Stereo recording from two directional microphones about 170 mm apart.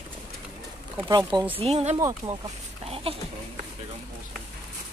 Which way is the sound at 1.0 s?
25° right (ahead or behind).